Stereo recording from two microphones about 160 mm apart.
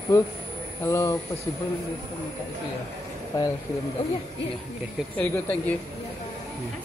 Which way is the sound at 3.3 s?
25° left (ahead or behind).